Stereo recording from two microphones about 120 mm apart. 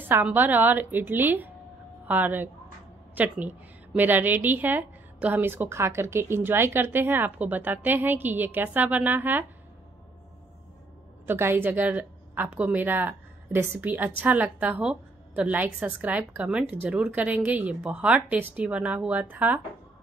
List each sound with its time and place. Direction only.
0.1 s a woman's voice: 15° right (ahead or behind)
11.2 s a woman's voice: 20° right (ahead or behind)